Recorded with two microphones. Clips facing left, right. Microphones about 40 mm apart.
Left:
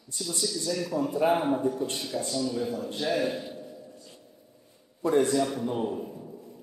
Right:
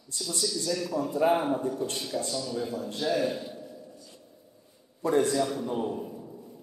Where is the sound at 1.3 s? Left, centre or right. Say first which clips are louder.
Left 2 dB; centre.